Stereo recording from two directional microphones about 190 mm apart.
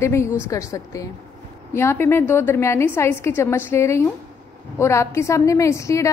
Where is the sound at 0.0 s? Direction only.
15° left (ahead or behind).